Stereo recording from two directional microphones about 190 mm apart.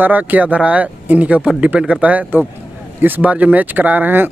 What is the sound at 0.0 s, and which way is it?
Speech, 10° right (ahead or behind).